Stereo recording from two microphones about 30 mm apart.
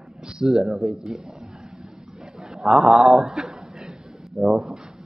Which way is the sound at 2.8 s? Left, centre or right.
Centre.